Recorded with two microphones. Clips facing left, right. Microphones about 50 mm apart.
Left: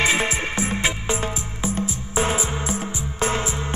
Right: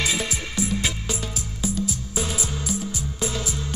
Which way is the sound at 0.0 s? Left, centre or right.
Left.